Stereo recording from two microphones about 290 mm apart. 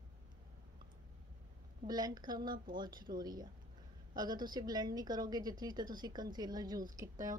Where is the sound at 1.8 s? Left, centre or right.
Centre.